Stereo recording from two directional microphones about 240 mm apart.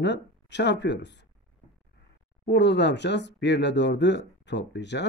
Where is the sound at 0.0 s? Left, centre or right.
Left.